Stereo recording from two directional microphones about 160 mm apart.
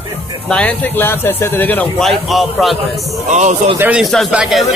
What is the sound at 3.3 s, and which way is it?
Speech, 50° right (ahead or behind).